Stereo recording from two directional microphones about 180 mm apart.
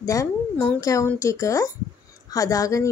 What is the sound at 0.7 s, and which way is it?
A woman's voice, 15° left (ahead or behind).